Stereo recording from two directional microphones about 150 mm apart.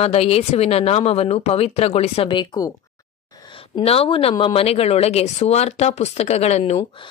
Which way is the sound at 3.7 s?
40° left (ahead or behind).